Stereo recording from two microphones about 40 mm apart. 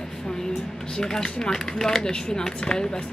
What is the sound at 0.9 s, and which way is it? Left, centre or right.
Speech, centre.